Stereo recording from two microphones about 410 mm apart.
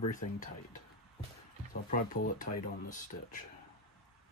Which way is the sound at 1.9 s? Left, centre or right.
Centre.